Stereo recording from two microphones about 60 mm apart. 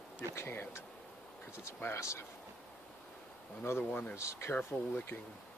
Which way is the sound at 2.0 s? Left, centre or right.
Left.